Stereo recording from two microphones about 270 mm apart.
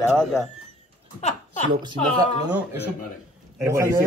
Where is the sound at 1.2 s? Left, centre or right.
Left.